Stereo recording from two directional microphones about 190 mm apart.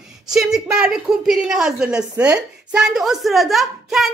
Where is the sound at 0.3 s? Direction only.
5° right (ahead or behind).